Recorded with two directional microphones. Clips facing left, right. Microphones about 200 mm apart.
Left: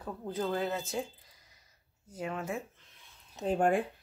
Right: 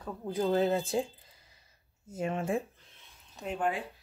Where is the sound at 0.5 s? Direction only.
30° right (ahead or behind).